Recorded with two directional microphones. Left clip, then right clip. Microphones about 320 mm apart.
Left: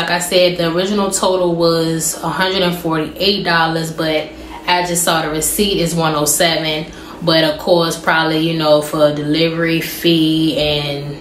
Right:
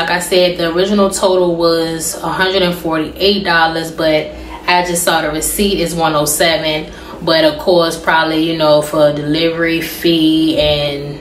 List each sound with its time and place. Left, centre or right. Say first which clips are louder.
0.1 s speech: left 1 dB; centre